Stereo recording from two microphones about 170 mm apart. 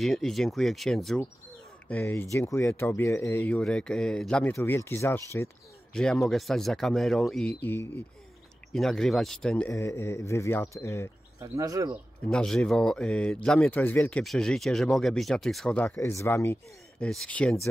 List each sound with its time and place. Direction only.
0.0 s speech: centre (ahead or behind)
4.6 s speech: 15° left (ahead or behind)
5.9 s speech: centre (ahead or behind)
11.3 s speech: 15° right (ahead or behind)
12.3 s speech: 5° left (ahead or behind)
17.0 s speech: 5° left (ahead or behind)